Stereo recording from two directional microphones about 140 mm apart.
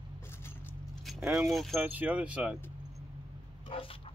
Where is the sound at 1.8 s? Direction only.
10° right (ahead or behind).